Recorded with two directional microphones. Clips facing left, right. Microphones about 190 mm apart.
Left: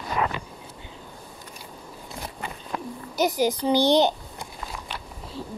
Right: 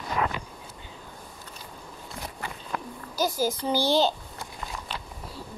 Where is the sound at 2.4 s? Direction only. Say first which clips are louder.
Left 2 dB; 20° left (ahead or behind).